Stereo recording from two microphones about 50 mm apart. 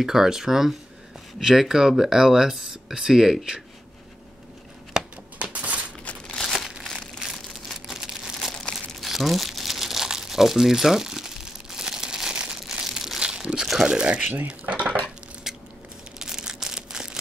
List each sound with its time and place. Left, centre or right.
0.0 s speech: centre
5.4 s a sound: right
6.3 s crumpling: centre
7.7 s crumpling: centre
8.7 s crumpling: centre
13.8 s speech: centre
14.5 s dishes: right
15.5 s biting: centre
16.2 s a sound: centre